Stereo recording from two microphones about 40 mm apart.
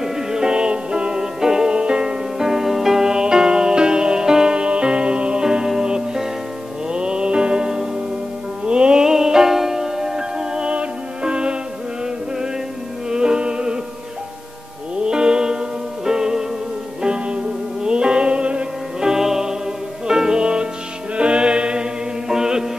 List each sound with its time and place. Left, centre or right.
0.0 s music: centre
2.3 s music: centre
13.1 s music: centre
15.0 s music: centre
18.9 s music: centre
22.3 s chant: centre